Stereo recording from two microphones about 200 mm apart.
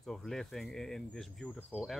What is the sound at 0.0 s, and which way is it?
Speech, centre (ahead or behind).